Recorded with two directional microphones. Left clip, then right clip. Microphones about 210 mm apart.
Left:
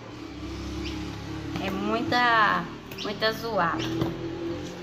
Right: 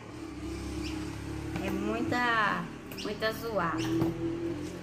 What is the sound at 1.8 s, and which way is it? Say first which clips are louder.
A woman's voice: left 7 dB; centre (ahead or behind).